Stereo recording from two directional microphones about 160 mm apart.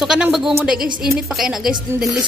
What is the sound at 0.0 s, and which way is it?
Speech, 5° right (ahead or behind).